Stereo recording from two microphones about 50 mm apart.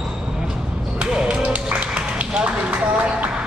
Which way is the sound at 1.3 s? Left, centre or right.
Right.